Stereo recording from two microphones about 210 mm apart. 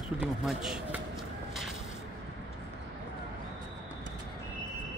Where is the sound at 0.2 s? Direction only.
5° right (ahead or behind).